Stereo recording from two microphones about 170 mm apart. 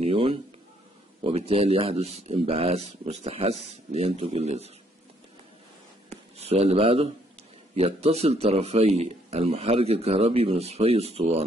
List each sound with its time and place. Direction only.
0.0 s a sound: 35° right (ahead or behind)
1.2 s speech: 35° right (ahead or behind)
6.0 s speech: 40° right (ahead or behind)